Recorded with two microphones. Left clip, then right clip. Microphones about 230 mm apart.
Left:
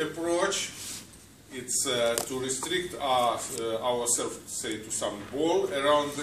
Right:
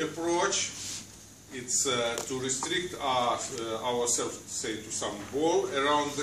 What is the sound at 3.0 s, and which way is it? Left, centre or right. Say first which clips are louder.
A man's voice: left 3 dB; centre.